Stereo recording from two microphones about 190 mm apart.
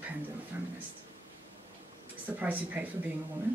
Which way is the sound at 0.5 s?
10° right (ahead or behind).